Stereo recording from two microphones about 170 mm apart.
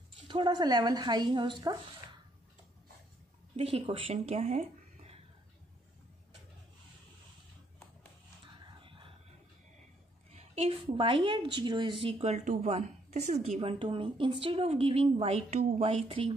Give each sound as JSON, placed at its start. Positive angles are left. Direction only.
{"t": 0.3, "sound": "a woman's voice", "side_deg": -25}
{"t": 3.5, "sound": "speech", "side_deg": -35}
{"t": 8.8, "sound": "a sound", "side_deg": -30}
{"t": 10.3, "sound": "a woman's voice", "side_deg": -35}